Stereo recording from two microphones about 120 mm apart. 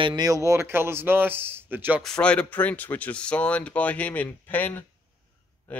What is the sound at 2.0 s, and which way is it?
Speech, 5° left (ahead or behind).